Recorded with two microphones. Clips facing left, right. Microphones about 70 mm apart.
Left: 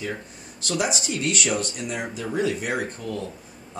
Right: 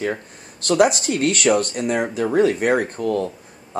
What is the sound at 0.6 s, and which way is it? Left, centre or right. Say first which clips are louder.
Speech: right 10 dB; right.